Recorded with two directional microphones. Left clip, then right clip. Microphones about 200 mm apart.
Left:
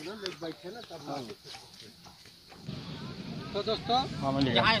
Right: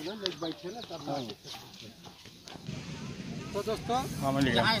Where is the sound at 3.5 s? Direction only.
5° right (ahead or behind).